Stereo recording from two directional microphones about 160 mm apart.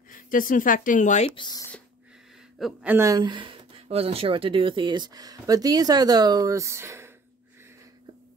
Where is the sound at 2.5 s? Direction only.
5° right (ahead or behind).